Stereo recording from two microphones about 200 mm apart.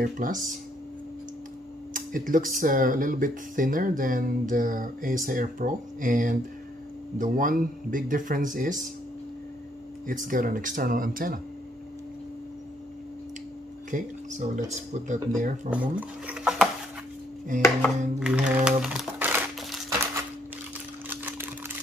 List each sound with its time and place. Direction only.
0.0 s speech: 40° right (ahead or behind)
2.0 s speech: 45° right (ahead or behind)
10.0 s speech: 40° right (ahead or behind)
13.8 s speech: 40° right (ahead or behind)
15.7 s speech: 5° right (ahead or behind)
17.5 s speech: 40° right (ahead or behind)
18.2 s crumpling: 5° right (ahead or behind)
21.1 s typewriter: 10° right (ahead or behind)